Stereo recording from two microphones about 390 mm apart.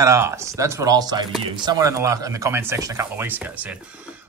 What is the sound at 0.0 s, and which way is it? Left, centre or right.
A man's voice, centre.